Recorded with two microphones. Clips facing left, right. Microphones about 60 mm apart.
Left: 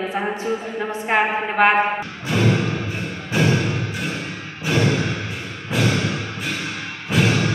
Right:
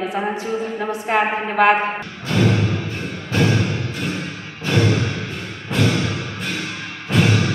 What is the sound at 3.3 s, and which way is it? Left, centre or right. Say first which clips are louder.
Music: right 1 dB; centre.